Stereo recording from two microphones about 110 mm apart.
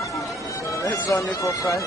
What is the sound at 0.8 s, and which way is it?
Speech, 30° left (ahead or behind).